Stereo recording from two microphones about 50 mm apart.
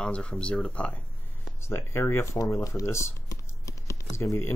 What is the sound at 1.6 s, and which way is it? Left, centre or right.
Speech, left.